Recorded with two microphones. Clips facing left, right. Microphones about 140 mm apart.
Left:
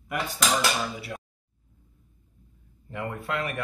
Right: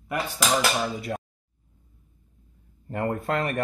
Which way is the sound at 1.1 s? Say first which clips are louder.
Right 6 dB; 50° right (ahead or behind).